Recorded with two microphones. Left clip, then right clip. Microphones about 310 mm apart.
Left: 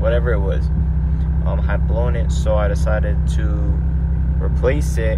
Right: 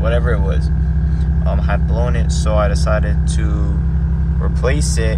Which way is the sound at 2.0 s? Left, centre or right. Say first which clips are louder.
Right 2 dB; centre.